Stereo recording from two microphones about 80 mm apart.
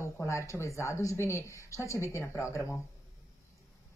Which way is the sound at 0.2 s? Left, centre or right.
Left.